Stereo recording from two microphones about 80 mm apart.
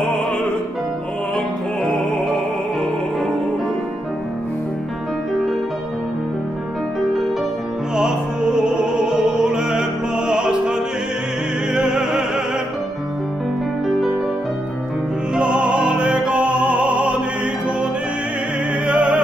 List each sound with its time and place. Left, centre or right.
2.0 s music: centre
7.9 s music: centre
15.3 s music: centre
18.9 s music: centre